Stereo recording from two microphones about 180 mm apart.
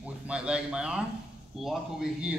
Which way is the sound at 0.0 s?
5° right (ahead or behind).